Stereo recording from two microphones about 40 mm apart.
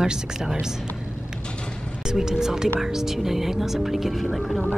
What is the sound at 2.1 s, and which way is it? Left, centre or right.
Speech, centre.